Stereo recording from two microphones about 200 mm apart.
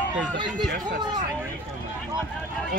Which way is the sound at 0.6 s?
55° right (ahead or behind).